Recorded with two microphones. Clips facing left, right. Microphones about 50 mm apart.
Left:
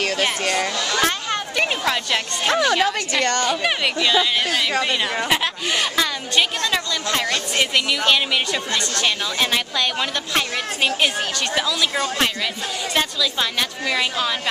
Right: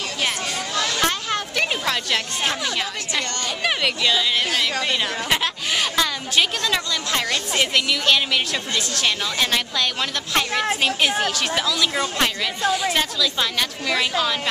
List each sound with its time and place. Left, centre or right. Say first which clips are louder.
0.9 s chatter: left 3 dB; centre
2.5 s a woman's voice: left 7 dB; left
3.6 s speech: left 1 dB; centre